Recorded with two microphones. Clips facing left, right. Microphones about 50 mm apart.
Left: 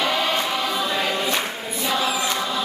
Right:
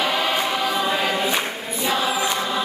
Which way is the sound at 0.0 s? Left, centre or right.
Centre.